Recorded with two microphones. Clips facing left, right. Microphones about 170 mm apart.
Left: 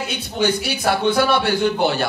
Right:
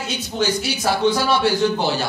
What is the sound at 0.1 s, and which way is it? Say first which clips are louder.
A man's voice: left 1 dB; 60° left (ahead or behind).